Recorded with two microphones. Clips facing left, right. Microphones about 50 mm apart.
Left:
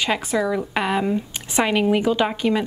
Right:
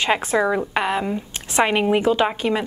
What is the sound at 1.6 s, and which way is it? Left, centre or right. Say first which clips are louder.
Speech: right 1 dB; centre.